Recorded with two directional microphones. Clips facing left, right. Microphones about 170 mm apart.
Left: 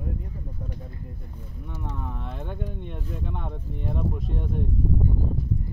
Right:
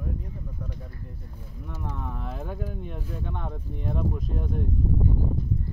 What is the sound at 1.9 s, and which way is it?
Speech, centre (ahead or behind).